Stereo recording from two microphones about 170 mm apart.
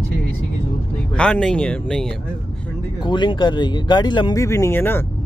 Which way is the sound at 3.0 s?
25° left (ahead or behind).